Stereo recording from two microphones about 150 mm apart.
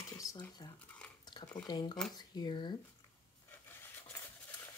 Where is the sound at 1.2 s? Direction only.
30° left (ahead or behind).